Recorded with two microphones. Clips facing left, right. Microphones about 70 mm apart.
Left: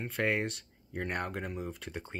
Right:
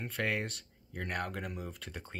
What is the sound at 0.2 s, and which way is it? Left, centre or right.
Speech, left.